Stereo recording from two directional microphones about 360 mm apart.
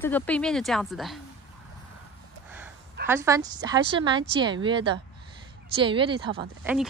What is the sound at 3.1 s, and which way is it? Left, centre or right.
A woman's voice, centre.